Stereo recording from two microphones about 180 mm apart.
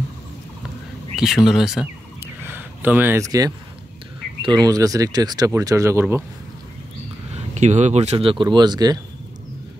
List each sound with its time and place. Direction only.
1.1 s speech: 5° right (ahead or behind)
7.3 s speech: 40° right (ahead or behind); by 9.0 s 20° right (ahead or behind)